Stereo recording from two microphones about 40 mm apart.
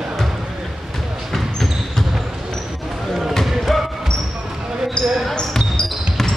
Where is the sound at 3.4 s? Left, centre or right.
Centre.